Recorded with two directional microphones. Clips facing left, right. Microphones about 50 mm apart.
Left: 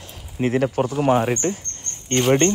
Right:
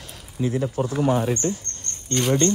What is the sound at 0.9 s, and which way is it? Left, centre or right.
Speech, left.